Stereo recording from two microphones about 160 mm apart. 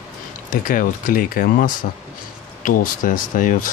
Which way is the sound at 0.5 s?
55° left (ahead or behind).